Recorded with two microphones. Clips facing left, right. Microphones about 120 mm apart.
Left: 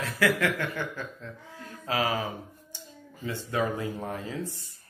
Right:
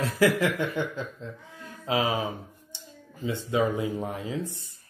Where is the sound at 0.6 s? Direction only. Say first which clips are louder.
Right 4 dB; 20° right (ahead or behind).